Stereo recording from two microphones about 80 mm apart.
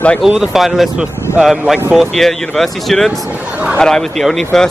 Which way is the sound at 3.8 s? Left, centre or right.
Centre.